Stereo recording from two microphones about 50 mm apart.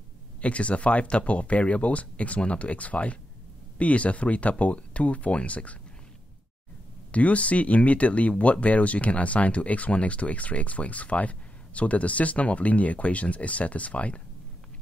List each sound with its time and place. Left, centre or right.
0.4 s speech: left
7.1 s speech: left